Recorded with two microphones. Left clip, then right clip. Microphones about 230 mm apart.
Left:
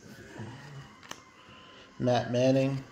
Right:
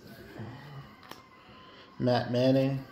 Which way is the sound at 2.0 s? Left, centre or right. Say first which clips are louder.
Left 1 dB; centre.